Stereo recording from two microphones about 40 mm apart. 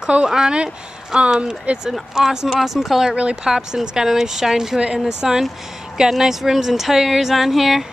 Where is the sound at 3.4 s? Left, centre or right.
Centre.